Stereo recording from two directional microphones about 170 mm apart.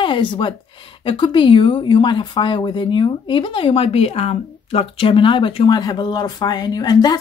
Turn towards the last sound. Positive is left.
turn(degrees=25)  # may be behind; listen again after turning